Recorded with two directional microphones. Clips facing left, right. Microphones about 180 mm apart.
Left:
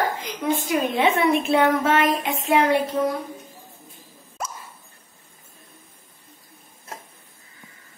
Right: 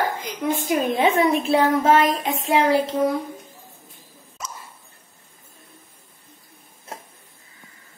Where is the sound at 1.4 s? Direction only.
30° right (ahead or behind).